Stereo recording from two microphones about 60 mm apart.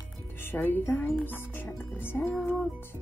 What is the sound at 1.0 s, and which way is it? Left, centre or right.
Speech, left.